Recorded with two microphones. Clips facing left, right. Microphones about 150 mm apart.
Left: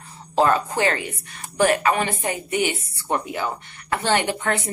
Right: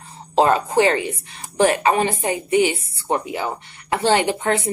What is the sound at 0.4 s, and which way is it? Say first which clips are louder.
Speech: right 3 dB; 20° right (ahead or behind).